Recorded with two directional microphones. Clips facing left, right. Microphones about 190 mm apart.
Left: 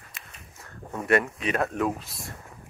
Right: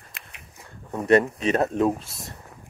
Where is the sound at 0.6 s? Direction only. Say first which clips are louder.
Right 4 dB; 20° right (ahead or behind).